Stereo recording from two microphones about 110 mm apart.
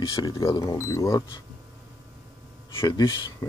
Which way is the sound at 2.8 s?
40° left (ahead or behind).